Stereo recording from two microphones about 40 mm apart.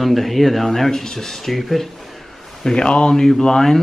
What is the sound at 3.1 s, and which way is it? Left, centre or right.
Speech, centre.